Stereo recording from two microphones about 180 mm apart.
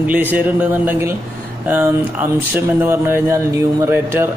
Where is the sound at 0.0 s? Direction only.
10° right (ahead or behind).